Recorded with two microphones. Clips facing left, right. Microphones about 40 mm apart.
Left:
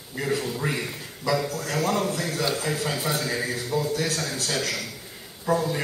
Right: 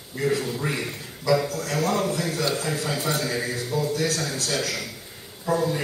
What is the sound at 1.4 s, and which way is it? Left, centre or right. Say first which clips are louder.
Speech: right 1 dB; left.